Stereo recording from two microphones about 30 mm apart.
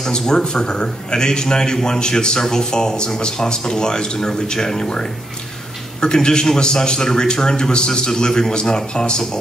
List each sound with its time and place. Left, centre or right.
0.1 s a man's voice: left